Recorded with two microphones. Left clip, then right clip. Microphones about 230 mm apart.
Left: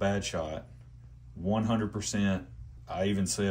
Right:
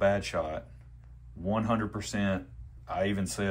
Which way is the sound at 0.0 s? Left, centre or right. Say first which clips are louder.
Right 4 dB; centre.